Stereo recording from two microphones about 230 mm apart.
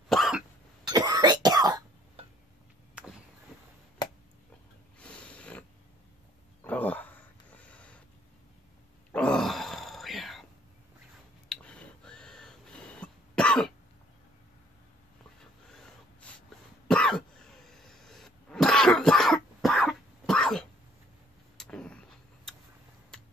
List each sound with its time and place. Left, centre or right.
0.1 s cough: centre
0.8 s cough: centre
2.9 s vehicle: centre
4.9 s sniff: centre
6.6 s a sound: centre
9.1 s grunt: centre
11.4 s a sound: centre
13.0 s cough: centre
16.8 s cough: centre
21.5 s a sound: centre
23.1 s finger snapping: centre